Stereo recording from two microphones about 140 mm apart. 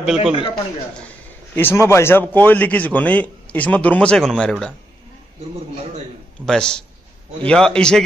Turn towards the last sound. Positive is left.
turn(degrees=5)  # may be behind; listen again after turning